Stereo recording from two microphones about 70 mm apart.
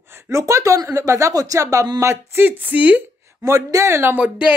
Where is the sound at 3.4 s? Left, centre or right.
Right.